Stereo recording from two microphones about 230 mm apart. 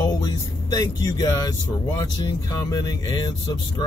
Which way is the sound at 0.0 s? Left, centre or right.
Centre.